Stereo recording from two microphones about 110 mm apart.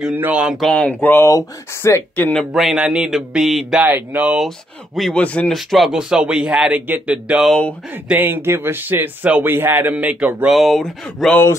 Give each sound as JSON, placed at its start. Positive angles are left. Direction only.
{"t": 0.1, "sound": "speech", "side_deg": -20}
{"t": 0.4, "sound": "speech", "side_deg": -5}
{"t": 0.7, "sound": "speech", "side_deg": 15}
{"t": 2.5, "sound": "speech", "side_deg": -5}
{"t": 3.8, "sound": "speech", "side_deg": -15}
{"t": 4.4, "sound": "speech", "side_deg": 0}
{"t": 5.5, "sound": "speech", "side_deg": 0}
{"t": 10.5, "sound": "speech", "side_deg": 0}